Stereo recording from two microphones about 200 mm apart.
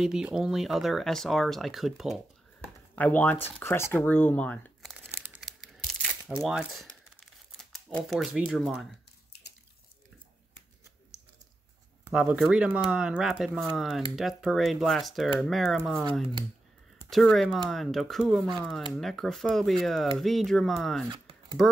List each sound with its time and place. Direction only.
0.0 s speech: 5° right (ahead or behind)
4.9 s tearing: 5° right (ahead or behind)
6.4 s speech: centre (ahead or behind)
12.1 s speech: 5° right (ahead or behind)
17.1 s speech: centre (ahead or behind)
21.1 s a sound: 20° right (ahead or behind)